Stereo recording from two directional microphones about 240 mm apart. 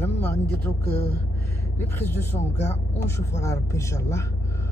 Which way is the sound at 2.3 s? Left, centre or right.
Centre.